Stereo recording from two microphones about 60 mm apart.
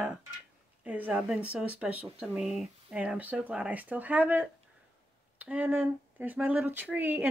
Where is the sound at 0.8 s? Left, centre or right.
Right.